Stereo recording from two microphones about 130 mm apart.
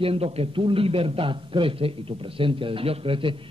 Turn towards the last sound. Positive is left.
turn(degrees=-40)  # may be behind; listen again after turning